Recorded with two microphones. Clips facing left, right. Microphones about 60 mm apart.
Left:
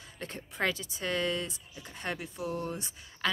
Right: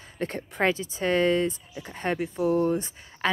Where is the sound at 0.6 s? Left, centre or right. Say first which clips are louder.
Right 7 dB; right.